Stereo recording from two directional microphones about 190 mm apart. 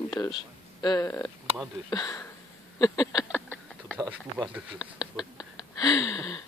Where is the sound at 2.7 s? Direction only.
20° left (ahead or behind).